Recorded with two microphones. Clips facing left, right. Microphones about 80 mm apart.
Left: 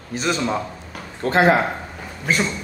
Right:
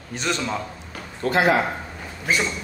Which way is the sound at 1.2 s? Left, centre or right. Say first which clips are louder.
Left 2 dB; left.